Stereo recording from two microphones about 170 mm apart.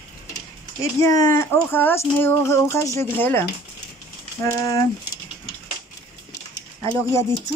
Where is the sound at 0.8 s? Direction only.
20° left (ahead or behind).